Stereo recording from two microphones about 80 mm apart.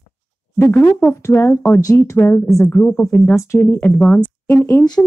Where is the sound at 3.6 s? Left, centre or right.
Left.